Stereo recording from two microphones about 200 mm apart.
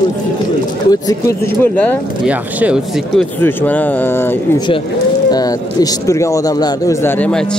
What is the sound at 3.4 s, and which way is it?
Speech, 10° left (ahead or behind).